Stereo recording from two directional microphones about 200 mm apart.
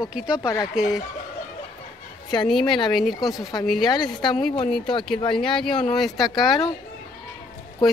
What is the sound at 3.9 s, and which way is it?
Speech, 20° left (ahead or behind).